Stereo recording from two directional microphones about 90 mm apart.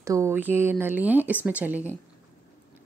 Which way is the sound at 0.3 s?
20° right (ahead or behind).